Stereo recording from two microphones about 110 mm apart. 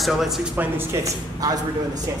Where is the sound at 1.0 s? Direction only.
30° right (ahead or behind).